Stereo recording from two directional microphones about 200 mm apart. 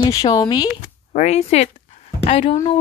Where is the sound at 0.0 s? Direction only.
20° left (ahead or behind).